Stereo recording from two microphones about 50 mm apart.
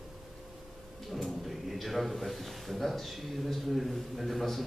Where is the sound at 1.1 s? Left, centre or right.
Centre.